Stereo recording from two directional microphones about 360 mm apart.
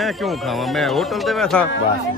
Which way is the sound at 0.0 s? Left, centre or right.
Centre.